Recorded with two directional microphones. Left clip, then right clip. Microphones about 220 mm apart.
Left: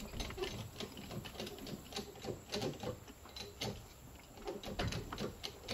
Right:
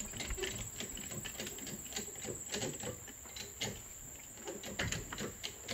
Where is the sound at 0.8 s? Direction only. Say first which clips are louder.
Right 2 dB; 20° left (ahead or behind).